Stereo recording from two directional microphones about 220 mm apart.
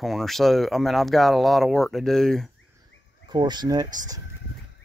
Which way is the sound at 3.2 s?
20° right (ahead or behind).